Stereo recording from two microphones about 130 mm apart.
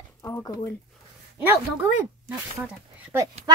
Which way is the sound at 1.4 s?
10° right (ahead or behind).